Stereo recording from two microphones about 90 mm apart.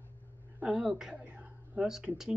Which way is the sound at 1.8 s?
5° right (ahead or behind).